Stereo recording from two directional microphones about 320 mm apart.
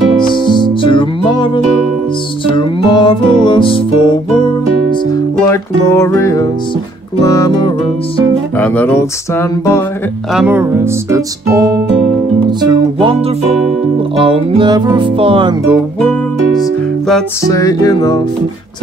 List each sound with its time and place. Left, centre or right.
0.3 s music: centre
10.3 s music: centre
15.6 s speech: centre
17.1 s music: centre